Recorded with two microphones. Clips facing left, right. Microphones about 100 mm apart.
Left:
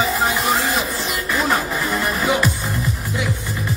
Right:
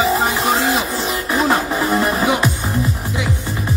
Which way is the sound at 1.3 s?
20° right (ahead or behind).